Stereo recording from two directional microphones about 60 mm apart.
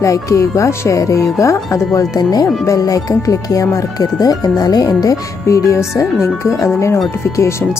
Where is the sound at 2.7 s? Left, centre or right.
Left.